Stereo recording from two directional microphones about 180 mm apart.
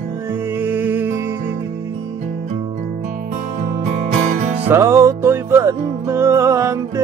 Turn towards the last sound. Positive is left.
turn(degrees=-15)  # may be behind; listen again after turning